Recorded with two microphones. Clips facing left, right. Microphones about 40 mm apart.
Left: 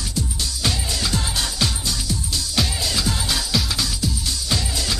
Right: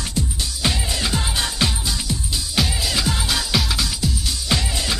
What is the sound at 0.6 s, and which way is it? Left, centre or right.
Music, right.